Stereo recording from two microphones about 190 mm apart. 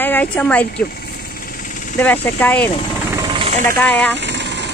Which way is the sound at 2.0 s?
10° left (ahead or behind).